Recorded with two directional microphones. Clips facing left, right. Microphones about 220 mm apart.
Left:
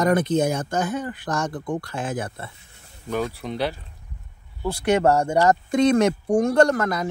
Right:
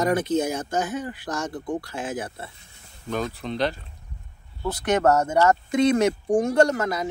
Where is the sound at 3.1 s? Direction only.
10° left (ahead or behind).